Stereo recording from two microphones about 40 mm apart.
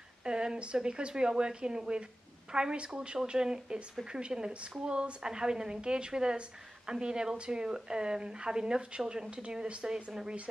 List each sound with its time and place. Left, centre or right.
0.2 s speech: right